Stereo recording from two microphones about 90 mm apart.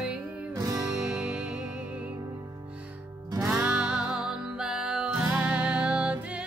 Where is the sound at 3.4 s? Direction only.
10° right (ahead or behind).